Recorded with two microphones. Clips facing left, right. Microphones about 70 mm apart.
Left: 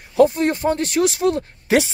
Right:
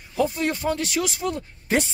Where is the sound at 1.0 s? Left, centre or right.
Left.